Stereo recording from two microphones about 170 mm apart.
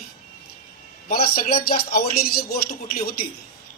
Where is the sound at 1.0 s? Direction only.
60° left (ahead or behind).